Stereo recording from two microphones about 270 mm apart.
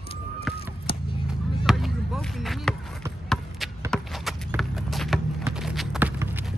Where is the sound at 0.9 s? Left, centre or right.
Left.